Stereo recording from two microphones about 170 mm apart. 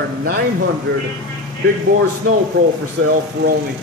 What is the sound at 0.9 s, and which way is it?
Speech, 75° right (ahead or behind).